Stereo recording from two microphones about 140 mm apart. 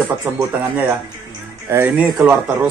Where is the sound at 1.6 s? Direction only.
15° right (ahead or behind).